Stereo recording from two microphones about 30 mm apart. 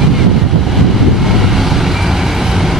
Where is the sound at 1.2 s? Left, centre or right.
Centre.